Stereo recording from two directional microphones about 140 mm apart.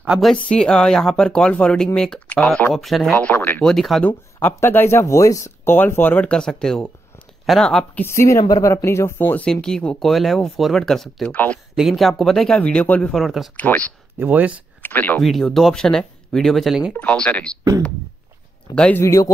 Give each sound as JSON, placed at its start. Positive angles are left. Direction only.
{"t": 0.0, "sound": "speech", "side_deg": -5}
{"t": 0.3, "sound": "speech", "side_deg": 5}
{"t": 3.6, "sound": "speech", "side_deg": 0}
{"t": 4.4, "sound": "speech", "side_deg": 15}
{"t": 11.7, "sound": "speech", "side_deg": 0}
{"t": 13.1, "sound": "speech", "side_deg": 0}
{"t": 13.6, "sound": "speech", "side_deg": 10}
{"t": 14.1, "sound": "speech", "side_deg": -10}
{"t": 14.8, "sound": "speech", "side_deg": 15}
{"t": 15.2, "sound": "speech", "side_deg": 0}
{"t": 16.9, "sound": "speech", "side_deg": 10}
{"t": 18.8, "sound": "speech", "side_deg": 10}
{"t": 19.0, "sound": "a man's voice", "side_deg": 20}